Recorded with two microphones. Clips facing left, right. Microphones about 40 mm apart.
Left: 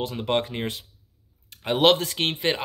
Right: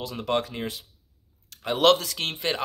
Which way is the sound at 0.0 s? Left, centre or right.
Left.